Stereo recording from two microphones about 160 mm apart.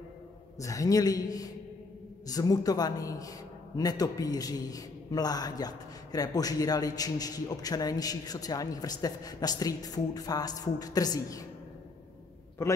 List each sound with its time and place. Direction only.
0.6 s a woman's voice: 20° left (ahead or behind)
12.6 s a man's voice: 15° left (ahead or behind)